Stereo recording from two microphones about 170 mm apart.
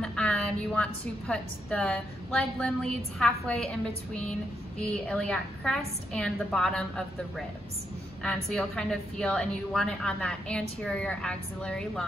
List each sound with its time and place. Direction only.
0.0 s a woman's voice: 5° left (ahead or behind)